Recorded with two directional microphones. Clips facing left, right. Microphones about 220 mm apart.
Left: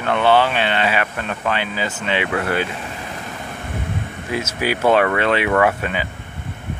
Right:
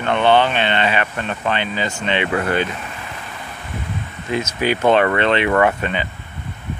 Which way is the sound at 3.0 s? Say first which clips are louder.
Left 3 dB; 40° left (ahead or behind).